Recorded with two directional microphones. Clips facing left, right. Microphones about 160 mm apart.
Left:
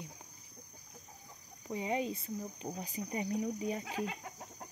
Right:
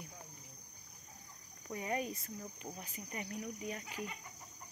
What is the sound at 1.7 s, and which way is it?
Cricket, 20° left (ahead or behind).